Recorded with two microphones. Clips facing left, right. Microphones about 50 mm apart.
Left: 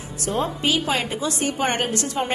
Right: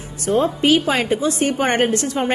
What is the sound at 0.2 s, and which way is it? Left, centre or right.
A woman's voice, right.